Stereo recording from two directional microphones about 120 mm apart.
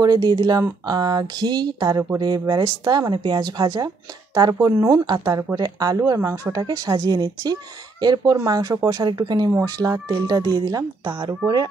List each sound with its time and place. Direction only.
0.0 s speech: 35° right (ahead or behind)
6.6 s speech: 35° right (ahead or behind)